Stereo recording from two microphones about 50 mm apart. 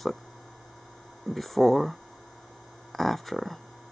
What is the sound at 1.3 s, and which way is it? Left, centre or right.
Speech, centre.